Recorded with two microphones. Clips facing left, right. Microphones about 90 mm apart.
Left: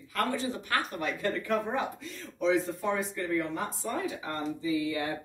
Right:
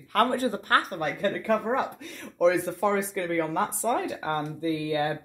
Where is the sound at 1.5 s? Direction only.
70° right (ahead or behind).